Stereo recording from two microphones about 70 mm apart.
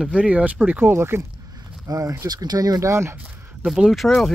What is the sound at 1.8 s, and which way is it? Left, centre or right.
Speech, right.